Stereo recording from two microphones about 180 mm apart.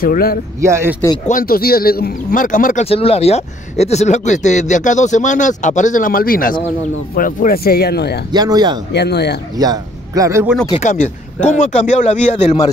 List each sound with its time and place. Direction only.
0.0 s speech: 55° left (ahead or behind)
0.6 s a man's voice: 15° right (ahead or behind)
1.2 s a man's voice: 50° left (ahead or behind)
8.3 s speech: 20° right (ahead or behind)
8.9 s speech: 65° left (ahead or behind)
9.6 s a man's voice: 20° right (ahead or behind)
11.5 s speech: 45° left (ahead or behind)